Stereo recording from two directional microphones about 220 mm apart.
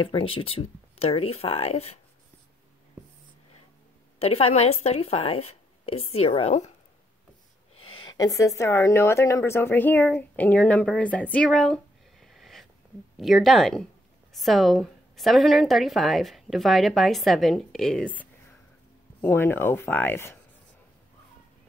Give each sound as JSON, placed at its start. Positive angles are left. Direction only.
{"t": 0.0, "sound": "speech", "side_deg": 25}
{"t": 4.2, "sound": "speech", "side_deg": 25}
{"t": 8.2, "sound": "a woman's voice", "side_deg": 15}